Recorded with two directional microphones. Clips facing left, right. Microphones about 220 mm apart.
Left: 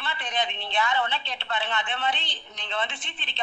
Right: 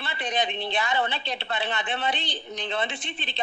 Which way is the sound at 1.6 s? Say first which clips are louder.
Right 1 dB; 40° right (ahead or behind).